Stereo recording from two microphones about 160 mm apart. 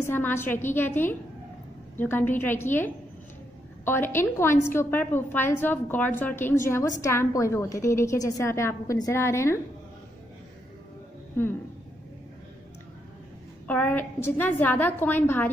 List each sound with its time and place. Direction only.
0.0 s a woman's voice: 15° left (ahead or behind)
13.7 s a woman's voice: 10° left (ahead or behind)